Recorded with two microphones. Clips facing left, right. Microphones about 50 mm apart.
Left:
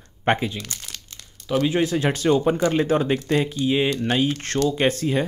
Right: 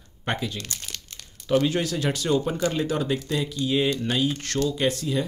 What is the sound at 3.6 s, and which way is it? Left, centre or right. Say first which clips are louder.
Speech: left 3 dB; left.